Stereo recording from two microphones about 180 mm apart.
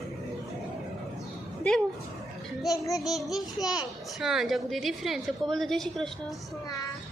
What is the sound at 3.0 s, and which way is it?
A woman's voice, centre (ahead or behind).